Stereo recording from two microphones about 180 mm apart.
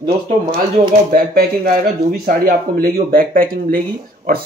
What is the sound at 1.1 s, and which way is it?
Speech, 55° right (ahead or behind).